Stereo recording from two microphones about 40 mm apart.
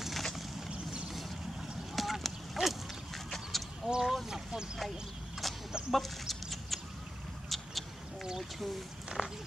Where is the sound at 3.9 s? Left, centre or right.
Right.